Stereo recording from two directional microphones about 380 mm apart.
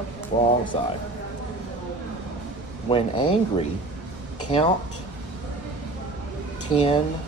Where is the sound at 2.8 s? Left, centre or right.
Centre.